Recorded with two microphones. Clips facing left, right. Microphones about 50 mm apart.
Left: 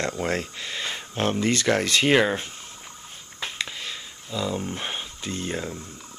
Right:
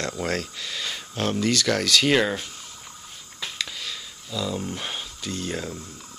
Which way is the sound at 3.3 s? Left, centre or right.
Left.